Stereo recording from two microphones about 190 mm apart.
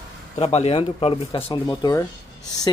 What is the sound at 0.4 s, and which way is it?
Speech, 35° left (ahead or behind).